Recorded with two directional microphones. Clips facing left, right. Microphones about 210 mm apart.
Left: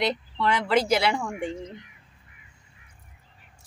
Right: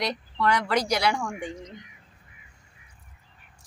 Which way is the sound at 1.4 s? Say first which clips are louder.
Left 4 dB; 30° left (ahead or behind).